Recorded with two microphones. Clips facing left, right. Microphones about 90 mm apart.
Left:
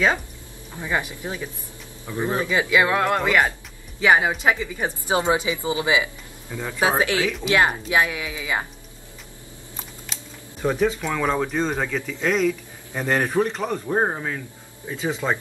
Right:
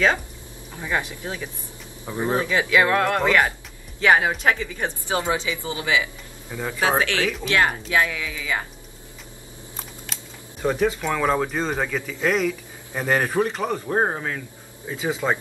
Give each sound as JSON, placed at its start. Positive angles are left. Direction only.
{"t": 0.8, "sound": "speech", "side_deg": 15}
{"t": 2.0, "sound": "speech", "side_deg": -20}
{"t": 2.4, "sound": "speech", "side_deg": 15}
{"t": 5.1, "sound": "speech", "side_deg": 20}
{"t": 10.6, "sound": "speech", "side_deg": 0}